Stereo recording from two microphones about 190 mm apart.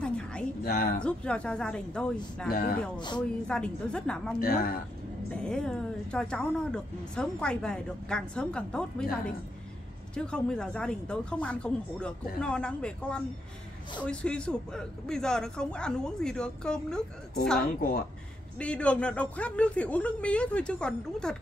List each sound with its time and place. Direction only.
0.0 s a sound: 5° left (ahead or behind)
0.7 s speech: 55° left (ahead or behind)
0.9 s a woman's voice: 5° left (ahead or behind)
2.5 s a woman's voice: 50° left (ahead or behind)
3.2 s a woman's voice: 5° left (ahead or behind)
4.4 s a woman's voice: 50° left (ahead or behind)
5.3 s a woman's voice: 5° left (ahead or behind)
10.1 s a woman's voice: 5° left (ahead or behind)
17.6 s a woman's voice: 50° left (ahead or behind)
18.6 s a woman's voice: 5° left (ahead or behind)